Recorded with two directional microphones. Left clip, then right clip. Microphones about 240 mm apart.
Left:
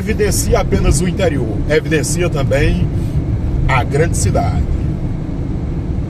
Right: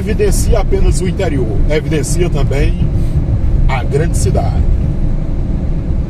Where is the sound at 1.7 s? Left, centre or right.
Left.